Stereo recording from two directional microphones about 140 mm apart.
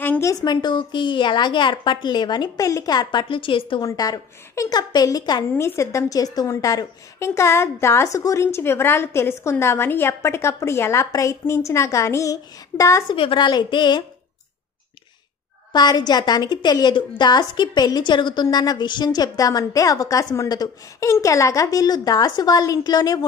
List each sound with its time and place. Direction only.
0.0 s a woman's voice: 15° left (ahead or behind); by 3.8 s 40° left (ahead or behind)
3.8 s a woman's voice: 30° left (ahead or behind)
13.1 s a woman's voice: 35° left (ahead or behind)
15.7 s a woman's voice: 30° left (ahead or behind)